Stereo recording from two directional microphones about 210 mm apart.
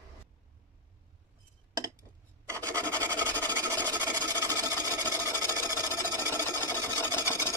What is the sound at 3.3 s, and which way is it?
Engine, 10° left (ahead or behind).